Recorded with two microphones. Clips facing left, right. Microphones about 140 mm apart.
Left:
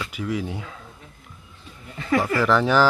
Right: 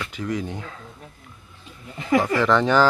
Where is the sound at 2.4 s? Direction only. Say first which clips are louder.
Left 1 dB; 5° left (ahead or behind).